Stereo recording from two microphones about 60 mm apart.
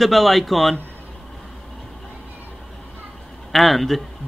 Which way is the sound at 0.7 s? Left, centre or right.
Left.